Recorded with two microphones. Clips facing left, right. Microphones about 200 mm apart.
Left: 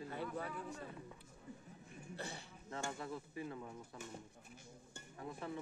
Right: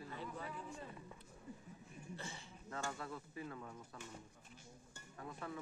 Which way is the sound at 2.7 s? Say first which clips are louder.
Left 1 dB; 25° left (ahead or behind).